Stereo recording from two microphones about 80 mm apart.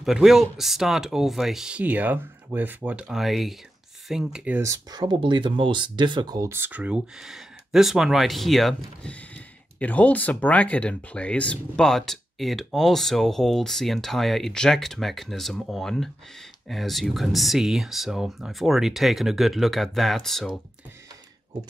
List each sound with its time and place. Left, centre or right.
0.0 s speech: centre
1.8 s speech: right
3.1 s speech: centre
4.9 s speech: right
6.5 s speech: right
7.2 s speech: centre
9.1 s speech: centre